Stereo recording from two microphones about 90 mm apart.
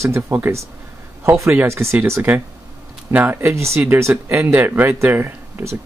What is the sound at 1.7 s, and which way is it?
Speech, 30° right (ahead or behind).